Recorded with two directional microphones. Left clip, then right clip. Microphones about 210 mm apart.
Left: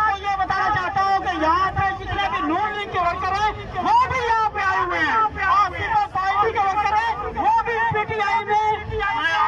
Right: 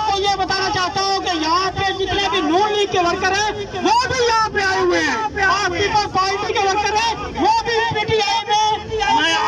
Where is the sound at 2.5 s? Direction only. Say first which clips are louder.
Right 6 dB; 40° right (ahead or behind).